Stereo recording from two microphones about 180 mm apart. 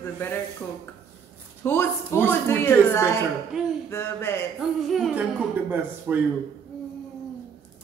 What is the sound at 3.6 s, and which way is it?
Speech, 5° right (ahead or behind).